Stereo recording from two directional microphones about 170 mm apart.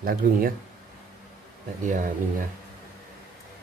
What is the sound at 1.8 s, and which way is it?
Speech, 50° right (ahead or behind).